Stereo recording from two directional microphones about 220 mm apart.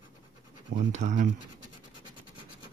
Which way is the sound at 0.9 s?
35° right (ahead or behind).